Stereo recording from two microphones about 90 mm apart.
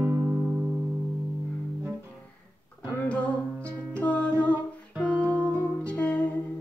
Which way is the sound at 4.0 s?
15° left (ahead or behind).